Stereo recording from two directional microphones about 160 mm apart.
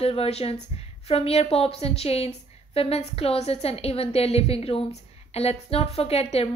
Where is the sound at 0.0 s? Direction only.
40° left (ahead or behind).